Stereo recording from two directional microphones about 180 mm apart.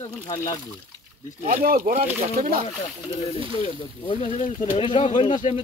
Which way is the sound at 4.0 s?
30° left (ahead or behind).